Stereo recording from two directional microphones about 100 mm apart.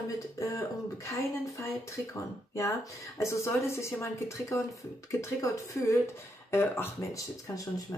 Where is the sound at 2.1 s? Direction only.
30° left (ahead or behind).